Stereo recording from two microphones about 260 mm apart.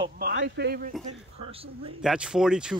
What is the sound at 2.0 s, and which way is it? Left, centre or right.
Speech, centre.